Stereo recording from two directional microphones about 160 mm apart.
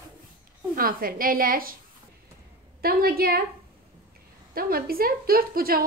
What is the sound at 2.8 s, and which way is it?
Speech, 70° right (ahead or behind).